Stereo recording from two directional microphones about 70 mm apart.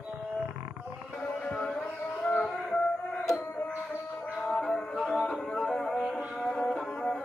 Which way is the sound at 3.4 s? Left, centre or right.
Left.